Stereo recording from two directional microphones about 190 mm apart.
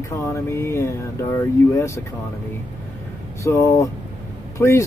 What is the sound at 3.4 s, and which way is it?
Speech, 15° left (ahead or behind).